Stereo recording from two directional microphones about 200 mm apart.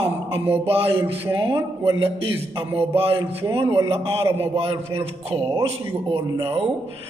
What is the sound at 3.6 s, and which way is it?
Speech, 10° right (ahead or behind).